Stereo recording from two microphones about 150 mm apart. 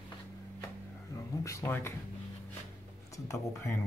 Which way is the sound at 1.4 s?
20° left (ahead or behind).